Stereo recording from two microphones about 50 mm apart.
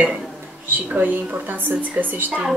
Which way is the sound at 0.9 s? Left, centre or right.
Right.